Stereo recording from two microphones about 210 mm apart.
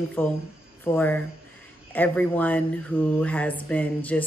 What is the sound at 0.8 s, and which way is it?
Speech, 10° left (ahead or behind).